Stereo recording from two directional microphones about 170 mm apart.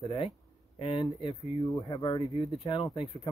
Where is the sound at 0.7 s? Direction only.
35° left (ahead or behind).